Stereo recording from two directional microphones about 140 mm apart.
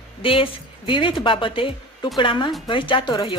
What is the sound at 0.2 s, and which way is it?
Speech, 40° left (ahead or behind).